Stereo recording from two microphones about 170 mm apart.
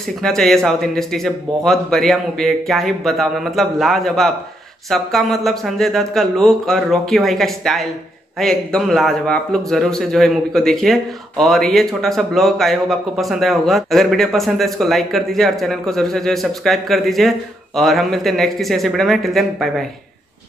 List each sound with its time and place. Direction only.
0.2 s a man's voice: 5° left (ahead or behind)